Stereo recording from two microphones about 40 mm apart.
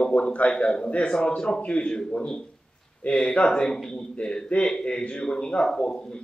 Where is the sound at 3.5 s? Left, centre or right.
Centre.